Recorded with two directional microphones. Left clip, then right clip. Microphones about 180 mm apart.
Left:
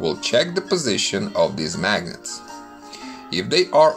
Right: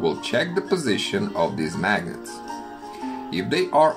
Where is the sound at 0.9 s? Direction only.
30° left (ahead or behind).